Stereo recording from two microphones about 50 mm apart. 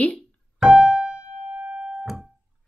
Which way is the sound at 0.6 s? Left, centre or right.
Centre.